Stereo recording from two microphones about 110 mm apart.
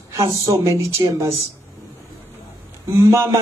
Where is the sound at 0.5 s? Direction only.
30° right (ahead or behind).